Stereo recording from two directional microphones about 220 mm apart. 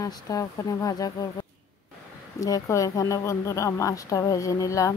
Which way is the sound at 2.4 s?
15° left (ahead or behind).